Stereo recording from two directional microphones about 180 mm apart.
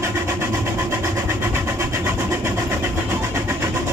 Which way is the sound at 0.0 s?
15° right (ahead or behind).